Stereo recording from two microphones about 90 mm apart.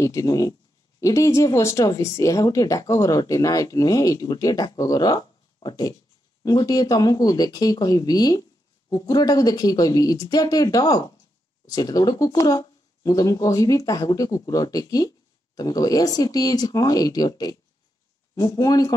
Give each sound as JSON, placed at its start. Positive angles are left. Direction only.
{"t": 0.0, "sound": "speech", "side_deg": 35}